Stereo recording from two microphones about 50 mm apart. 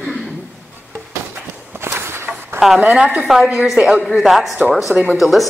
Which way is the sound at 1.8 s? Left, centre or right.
Right.